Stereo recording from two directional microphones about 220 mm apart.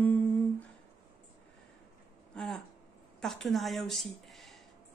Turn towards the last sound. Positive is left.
turn(degrees=0)  # may be behind; listen again after turning